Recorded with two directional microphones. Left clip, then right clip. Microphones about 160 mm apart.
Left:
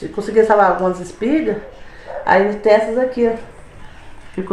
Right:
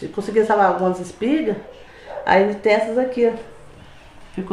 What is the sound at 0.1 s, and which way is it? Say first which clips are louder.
Speech: left 5 dB; 5° right (ahead or behind).